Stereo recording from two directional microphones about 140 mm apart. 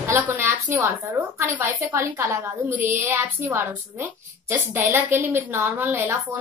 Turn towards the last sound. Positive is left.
turn(degrees=-15)  # may be behind; listen again after turning